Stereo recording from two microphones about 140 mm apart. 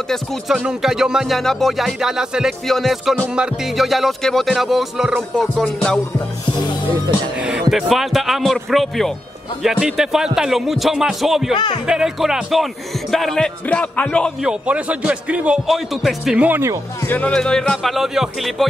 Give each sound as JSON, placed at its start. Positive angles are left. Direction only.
{"t": 0.1, "sound": "music", "side_deg": 0}
{"t": 7.3, "sound": "music", "side_deg": -5}
{"t": 11.5, "sound": "speech", "side_deg": 35}
{"t": 11.8, "sound": "music", "side_deg": -5}
{"t": 13.1, "sound": "speech", "side_deg": 0}
{"t": 14.4, "sound": "speech", "side_deg": -10}
{"t": 17.0, "sound": "music", "side_deg": 10}